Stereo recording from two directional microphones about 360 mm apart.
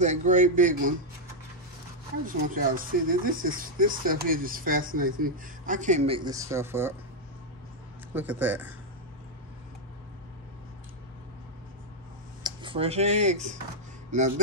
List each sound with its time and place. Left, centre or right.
0.0 s speech: centre
2.2 s speech: right; by 7.0 s centre
8.1 s speech: centre
12.4 s speech: centre